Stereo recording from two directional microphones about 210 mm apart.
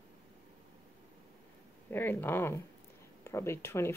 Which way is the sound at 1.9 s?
10° left (ahead or behind).